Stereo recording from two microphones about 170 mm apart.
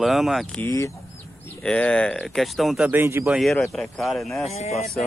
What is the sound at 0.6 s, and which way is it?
Speech, 20° left (ahead or behind).